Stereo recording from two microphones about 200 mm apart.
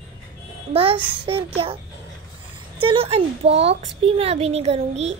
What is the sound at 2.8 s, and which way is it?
A woman's voice, 25° right (ahead or behind).